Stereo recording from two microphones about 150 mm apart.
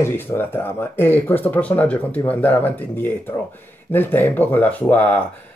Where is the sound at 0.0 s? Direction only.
15° left (ahead or behind).